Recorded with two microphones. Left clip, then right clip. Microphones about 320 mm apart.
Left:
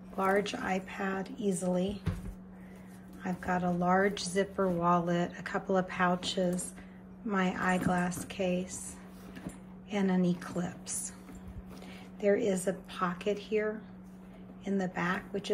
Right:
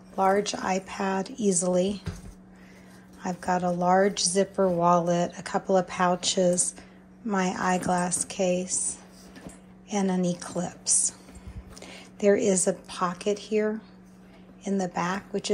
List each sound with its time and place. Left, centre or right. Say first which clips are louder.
0.2 s a woman's voice: right 6 dB; centre
3.2 s a woman's voice: right 6 dB; centre